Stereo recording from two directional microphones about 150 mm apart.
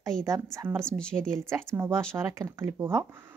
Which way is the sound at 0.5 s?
15° right (ahead or behind).